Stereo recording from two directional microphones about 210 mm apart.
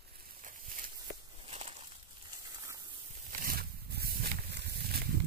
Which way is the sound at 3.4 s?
45° right (ahead or behind).